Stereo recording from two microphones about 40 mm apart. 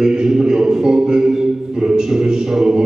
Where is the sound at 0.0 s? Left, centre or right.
Centre.